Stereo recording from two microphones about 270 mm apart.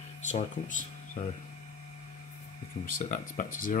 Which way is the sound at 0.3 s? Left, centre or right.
Left.